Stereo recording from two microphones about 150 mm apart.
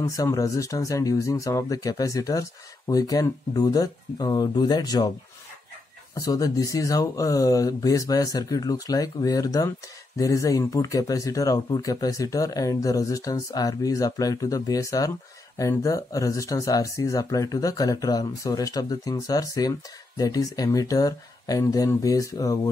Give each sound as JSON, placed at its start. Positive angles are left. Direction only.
{"t": 0.0, "sound": "speech", "side_deg": 20}
{"t": 6.1, "sound": "speech", "side_deg": 25}